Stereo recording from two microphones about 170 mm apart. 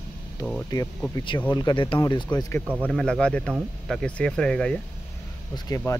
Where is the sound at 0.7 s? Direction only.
25° left (ahead or behind).